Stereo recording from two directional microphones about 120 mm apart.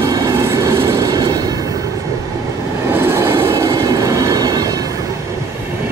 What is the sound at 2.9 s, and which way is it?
Train, 20° right (ahead or behind).